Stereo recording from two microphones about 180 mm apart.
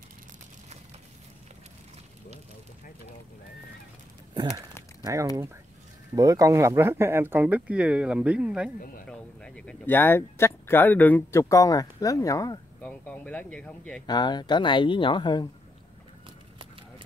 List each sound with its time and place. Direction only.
5.0 s speech: 20° right (ahead or behind)
9.1 s speech: 5° left (ahead or behind)
13.1 s speech: 10° left (ahead or behind)
14.0 s speech: 25° left (ahead or behind)